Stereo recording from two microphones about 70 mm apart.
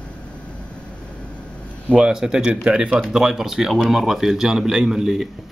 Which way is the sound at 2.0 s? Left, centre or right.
Centre.